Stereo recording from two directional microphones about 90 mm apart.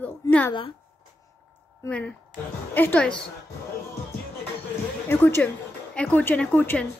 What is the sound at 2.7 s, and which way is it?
Speech, 20° left (ahead or behind).